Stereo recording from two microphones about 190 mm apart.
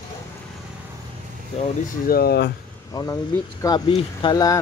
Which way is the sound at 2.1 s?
55° left (ahead or behind).